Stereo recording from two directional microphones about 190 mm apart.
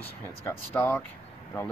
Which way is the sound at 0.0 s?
10° left (ahead or behind).